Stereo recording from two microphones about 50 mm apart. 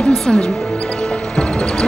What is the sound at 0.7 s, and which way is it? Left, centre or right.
Music, centre.